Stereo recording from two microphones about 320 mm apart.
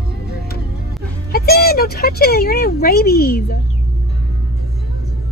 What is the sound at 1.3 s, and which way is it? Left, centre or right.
Speech, left.